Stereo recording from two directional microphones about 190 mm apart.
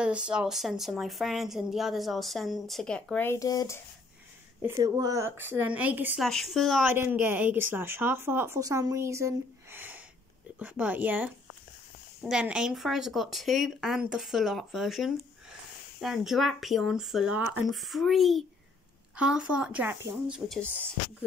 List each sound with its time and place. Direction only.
0.0 s a woman's voice: 5° right (ahead or behind); by 3.8 s 15° left (ahead or behind)
4.6 s a woman's voice: 15° right (ahead or behind); by 6.9 s centre (ahead or behind)
6.9 s a woman's voice: 10° right (ahead or behind)
20.3 s a woman's voice: centre (ahead or behind)